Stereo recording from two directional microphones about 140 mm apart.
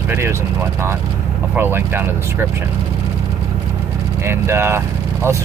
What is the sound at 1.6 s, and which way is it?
Speech, 15° right (ahead or behind).